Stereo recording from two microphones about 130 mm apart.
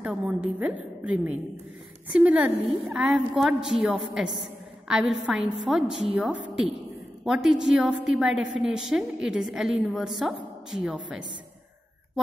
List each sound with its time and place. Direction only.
0.0 s a woman's voice: 10° right (ahead or behind)